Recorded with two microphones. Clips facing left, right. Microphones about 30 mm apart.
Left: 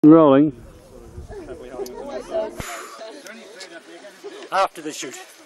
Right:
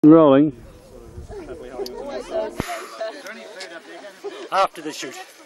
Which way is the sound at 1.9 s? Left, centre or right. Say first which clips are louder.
Right 1 dB; right.